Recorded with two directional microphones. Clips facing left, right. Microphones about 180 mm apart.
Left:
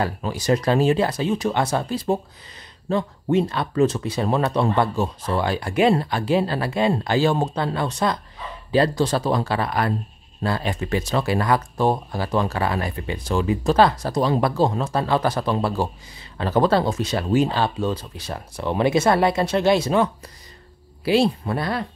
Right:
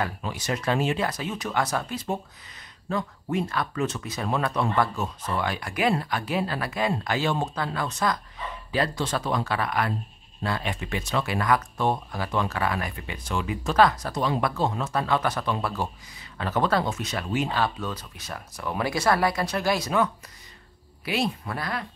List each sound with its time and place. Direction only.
0.0 s speech: 35° left (ahead or behind)